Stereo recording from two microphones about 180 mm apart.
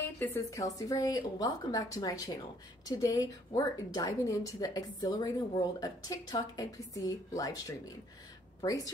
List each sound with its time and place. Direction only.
0.2 s a woman's voice: 15° left (ahead or behind)